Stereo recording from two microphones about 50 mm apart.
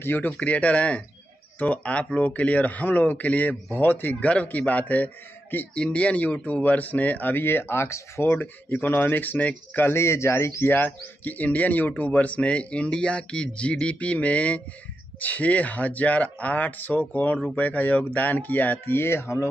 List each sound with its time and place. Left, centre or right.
0.0 s speech: left
0.4 s speech: left
4.1 s speech: left
7.3 s speech: left
9.8 s speech: left
10.7 s speech: left
18.9 s speech: left